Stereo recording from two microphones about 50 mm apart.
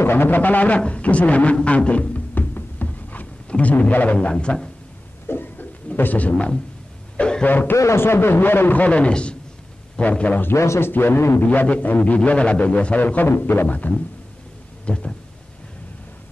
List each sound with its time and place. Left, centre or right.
0.0 s a man's voice: left
2.3 s a sound: left
4.3 s a man's voice: left
5.3 s a sound: left
5.9 s a man's voice: left
7.2 s speech: centre
7.4 s a man's voice: left
7.7 s a man's voice: left
8.0 s a man's voice: left
10.5 s a man's voice: left
10.9 s a man's voice: left
11.4 s a man's voice: left
13.5 s a man's voice: left
14.9 s a man's voice: left